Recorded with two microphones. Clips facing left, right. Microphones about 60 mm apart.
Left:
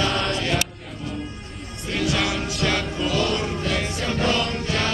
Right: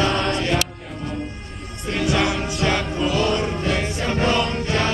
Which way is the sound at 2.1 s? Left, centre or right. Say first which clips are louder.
Right 3 dB; centre.